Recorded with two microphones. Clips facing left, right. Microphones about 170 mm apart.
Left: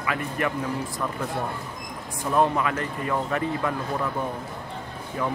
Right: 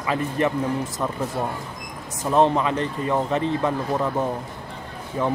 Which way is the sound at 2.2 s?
25° right (ahead or behind).